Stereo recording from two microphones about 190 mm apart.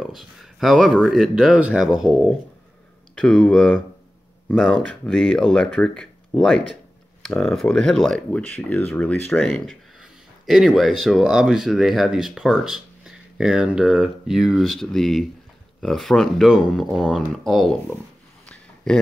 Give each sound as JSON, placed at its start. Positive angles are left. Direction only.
{"t": 0.0, "sound": "speech", "side_deg": 0}
{"t": 4.8, "sound": "speech", "side_deg": 5}